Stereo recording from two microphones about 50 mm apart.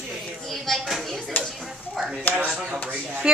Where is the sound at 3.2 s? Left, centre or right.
Centre.